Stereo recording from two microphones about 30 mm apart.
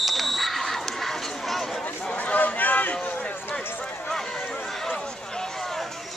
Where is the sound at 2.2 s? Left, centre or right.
Left.